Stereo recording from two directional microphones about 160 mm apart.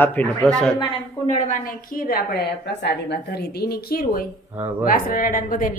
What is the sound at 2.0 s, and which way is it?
A woman's voice, 80° left.